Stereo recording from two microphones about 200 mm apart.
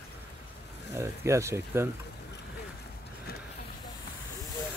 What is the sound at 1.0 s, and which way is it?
Speech, 15° right (ahead or behind).